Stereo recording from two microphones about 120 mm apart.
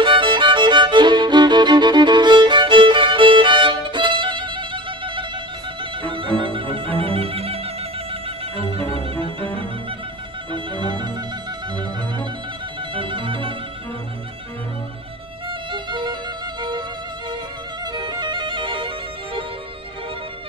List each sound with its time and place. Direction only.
0.0 s music: 45° right (ahead or behind)
10.5 s music: 40° right (ahead or behind)
12.9 s music: 45° right (ahead or behind)
15.7 s violin: 40° right (ahead or behind)
17.9 s music: 40° right (ahead or behind)